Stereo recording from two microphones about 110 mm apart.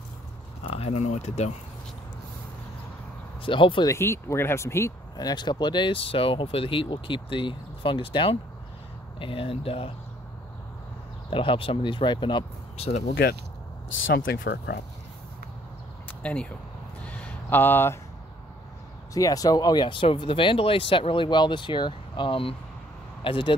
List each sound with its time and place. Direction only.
0.7 s speech: 70° left (ahead or behind); by 1.5 s 90° left
3.4 s speech: 50° left (ahead or behind)
3.8 s speech: 25° left (ahead or behind); by 9.9 s 60° left (ahead or behind)
11.2 s speech: 55° left (ahead or behind)
12.7 s speech: 80° left
16.1 s speech: 10° left (ahead or behind)
17.0 s a sound: 15° left (ahead or behind)
19.1 s speech: 35° left (ahead or behind); by 23.5 s 50° left (ahead or behind)